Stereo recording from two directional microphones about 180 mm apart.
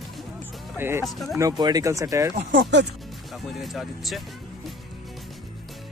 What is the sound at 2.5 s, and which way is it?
Speech, 75° right (ahead or behind).